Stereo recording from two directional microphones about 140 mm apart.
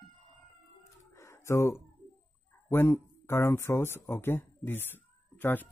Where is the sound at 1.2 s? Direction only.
20° left (ahead or behind).